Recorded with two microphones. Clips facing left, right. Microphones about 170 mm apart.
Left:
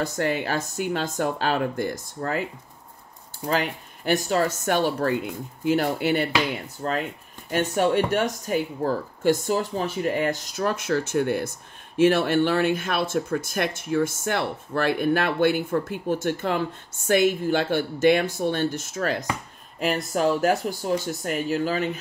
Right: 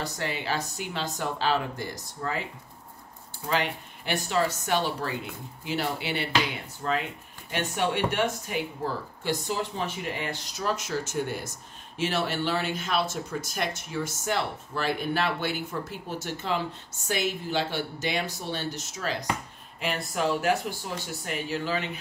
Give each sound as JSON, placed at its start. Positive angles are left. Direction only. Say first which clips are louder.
{"t": 0.0, "sound": "speech", "louder": "left 7 dB", "side_deg": 50}
{"t": 3.4, "sound": "speech", "louder": "left 3 dB", "side_deg": 45}